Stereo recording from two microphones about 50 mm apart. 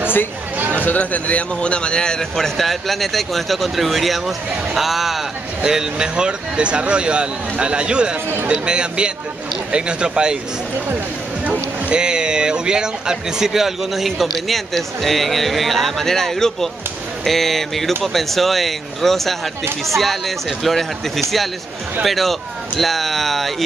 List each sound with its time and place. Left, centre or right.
0.7 s speech: left; by 5.2 s centre
5.6 s speech: centre
11.9 s speech: centre
22.0 s speech: centre